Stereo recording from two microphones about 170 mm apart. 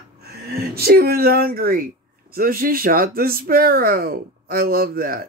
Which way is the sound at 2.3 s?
60° right (ahead or behind).